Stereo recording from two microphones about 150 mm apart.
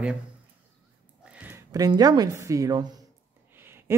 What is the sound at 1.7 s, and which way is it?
A woman's voice, 25° right (ahead or behind).